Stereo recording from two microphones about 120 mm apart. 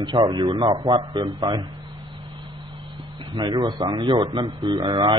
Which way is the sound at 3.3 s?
35° right (ahead or behind).